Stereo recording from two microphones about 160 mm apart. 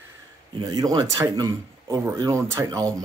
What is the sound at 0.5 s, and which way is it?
Speech, 25° right (ahead or behind).